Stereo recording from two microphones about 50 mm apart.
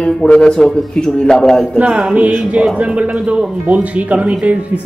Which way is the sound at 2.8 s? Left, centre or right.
Right.